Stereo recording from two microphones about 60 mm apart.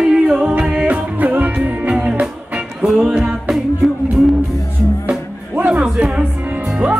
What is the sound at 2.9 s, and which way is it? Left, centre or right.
Music, centre.